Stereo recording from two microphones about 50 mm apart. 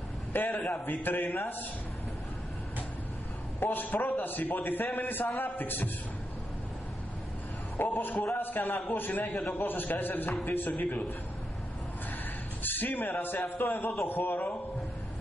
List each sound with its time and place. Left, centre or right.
0.3 s a man's voice: left
3.5 s a man's voice: left
7.8 s a man's voice: left
12.6 s a man's voice: left